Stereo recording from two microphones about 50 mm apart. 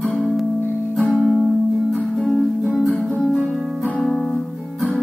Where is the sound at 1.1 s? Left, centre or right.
Centre.